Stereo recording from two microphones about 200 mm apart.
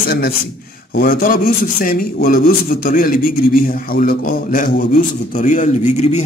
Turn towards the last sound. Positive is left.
turn(degrees=35)  # may be behind; listen again after turning